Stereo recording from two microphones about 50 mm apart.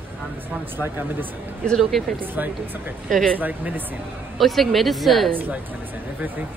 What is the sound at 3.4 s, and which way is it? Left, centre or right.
Speech, right.